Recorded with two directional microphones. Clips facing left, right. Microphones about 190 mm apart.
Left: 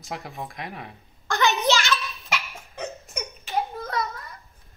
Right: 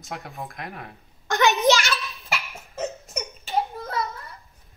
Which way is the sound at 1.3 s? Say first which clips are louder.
Right 2 dB; 20° right (ahead or behind).